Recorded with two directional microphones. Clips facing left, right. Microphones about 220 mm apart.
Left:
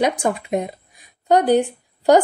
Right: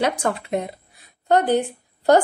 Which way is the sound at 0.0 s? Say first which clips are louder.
Left 2 dB; 15° left (ahead or behind).